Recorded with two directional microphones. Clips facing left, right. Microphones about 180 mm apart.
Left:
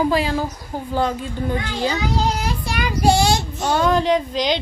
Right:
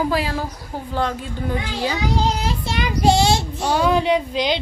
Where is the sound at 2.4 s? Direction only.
25° right (ahead or behind).